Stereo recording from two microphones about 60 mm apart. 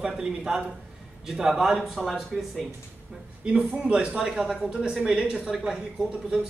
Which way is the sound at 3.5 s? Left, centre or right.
Centre.